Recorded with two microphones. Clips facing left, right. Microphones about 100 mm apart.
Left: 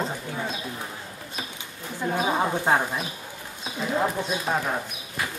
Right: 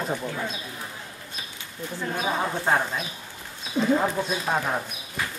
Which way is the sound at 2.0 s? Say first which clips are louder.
Left 3 dB; 15° left (ahead or behind).